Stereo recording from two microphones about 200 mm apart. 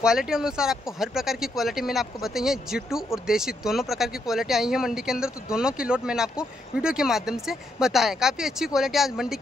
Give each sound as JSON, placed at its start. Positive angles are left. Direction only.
{"t": 0.0, "sound": "speech", "side_deg": -5}